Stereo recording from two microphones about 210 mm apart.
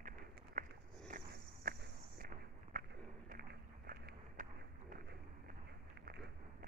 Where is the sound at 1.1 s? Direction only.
40° right (ahead or behind).